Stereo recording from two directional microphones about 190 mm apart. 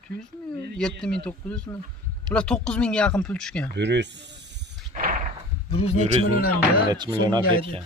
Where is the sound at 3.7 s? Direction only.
65° right (ahead or behind).